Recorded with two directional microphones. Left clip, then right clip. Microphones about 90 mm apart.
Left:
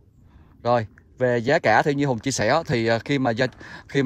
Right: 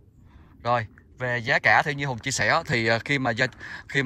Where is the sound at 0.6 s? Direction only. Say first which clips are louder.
Left 3 dB; 90° left.